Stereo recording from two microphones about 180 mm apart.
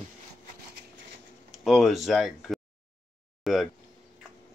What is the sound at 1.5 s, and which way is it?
Speech, centre (ahead or behind).